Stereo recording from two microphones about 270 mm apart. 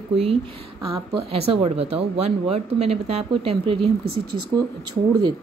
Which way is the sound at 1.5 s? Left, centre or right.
Right.